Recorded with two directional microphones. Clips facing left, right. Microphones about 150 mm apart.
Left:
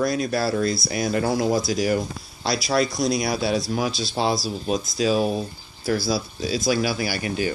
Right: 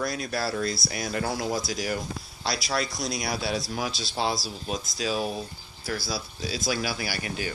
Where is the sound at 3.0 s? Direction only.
75° left (ahead or behind).